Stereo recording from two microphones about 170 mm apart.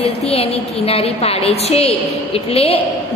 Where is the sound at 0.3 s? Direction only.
35° left (ahead or behind).